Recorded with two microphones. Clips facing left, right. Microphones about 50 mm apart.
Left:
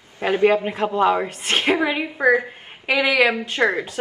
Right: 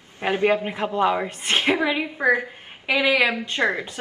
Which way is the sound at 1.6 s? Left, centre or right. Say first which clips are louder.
Left 2 dB; left.